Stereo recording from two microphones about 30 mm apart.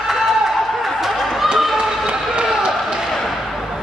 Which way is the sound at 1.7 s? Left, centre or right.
Right.